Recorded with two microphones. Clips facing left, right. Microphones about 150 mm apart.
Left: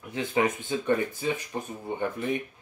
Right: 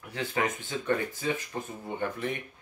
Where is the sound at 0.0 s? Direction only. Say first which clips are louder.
Left 4 dB; 20° left (ahead or behind).